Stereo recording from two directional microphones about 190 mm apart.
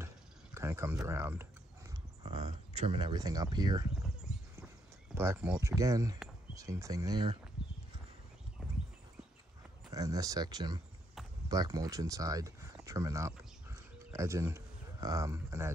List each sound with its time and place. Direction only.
0.6 s speech: 15° right (ahead or behind)
2.2 s speech: 30° right (ahead or behind)
4.3 s horse: 5° right (ahead or behind)
5.1 s speech: 10° right (ahead or behind)
7.6 s horse: 5° right (ahead or behind)
9.9 s speech: 20° right (ahead or behind)
11.4 s a sound: 20° right (ahead or behind)